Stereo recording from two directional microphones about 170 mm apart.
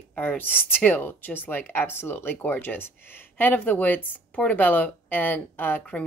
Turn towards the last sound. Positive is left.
turn(degrees=10)  # may be behind; listen again after turning